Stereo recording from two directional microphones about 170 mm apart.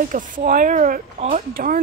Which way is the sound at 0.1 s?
50° right (ahead or behind).